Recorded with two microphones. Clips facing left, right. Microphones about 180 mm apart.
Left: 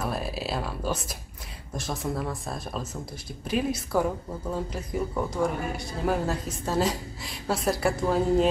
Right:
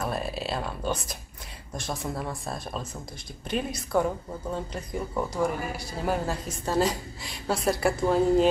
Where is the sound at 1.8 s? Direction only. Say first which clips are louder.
Left 2 dB; centre (ahead or behind).